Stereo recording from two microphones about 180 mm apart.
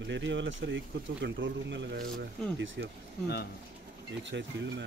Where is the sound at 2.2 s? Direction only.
90° right.